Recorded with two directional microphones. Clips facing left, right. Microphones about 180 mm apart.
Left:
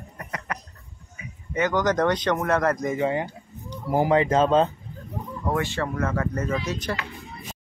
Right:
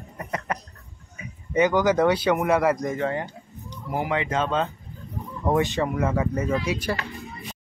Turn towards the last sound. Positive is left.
turn(degrees=-10)  # may be behind; listen again after turning